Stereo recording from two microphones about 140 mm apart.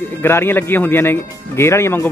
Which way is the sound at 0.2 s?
15° left (ahead or behind).